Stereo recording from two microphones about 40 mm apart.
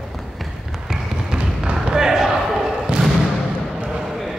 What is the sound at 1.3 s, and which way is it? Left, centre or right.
Basketball bounce, right.